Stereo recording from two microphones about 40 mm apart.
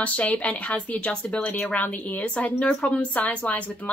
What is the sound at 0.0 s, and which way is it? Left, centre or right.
A woman's voice, left.